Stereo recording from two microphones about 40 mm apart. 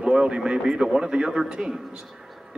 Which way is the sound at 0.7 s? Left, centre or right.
Centre.